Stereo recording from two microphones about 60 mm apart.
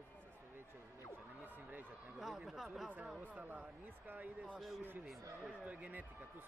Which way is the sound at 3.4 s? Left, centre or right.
Right.